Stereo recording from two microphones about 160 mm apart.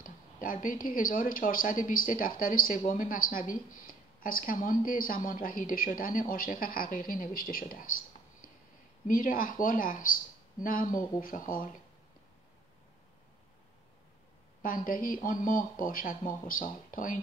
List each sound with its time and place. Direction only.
0.0 s speech: 60° left (ahead or behind)
9.0 s speech: 60° left (ahead or behind)
14.9 s speech: 60° left (ahead or behind)